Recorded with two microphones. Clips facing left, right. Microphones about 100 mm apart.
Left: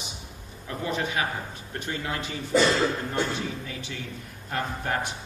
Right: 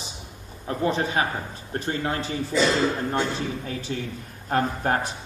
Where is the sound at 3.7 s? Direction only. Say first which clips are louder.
Right 6 dB; 35° right (ahead or behind).